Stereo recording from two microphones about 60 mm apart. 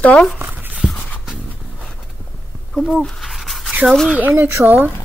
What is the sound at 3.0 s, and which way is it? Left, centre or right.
Dog, centre.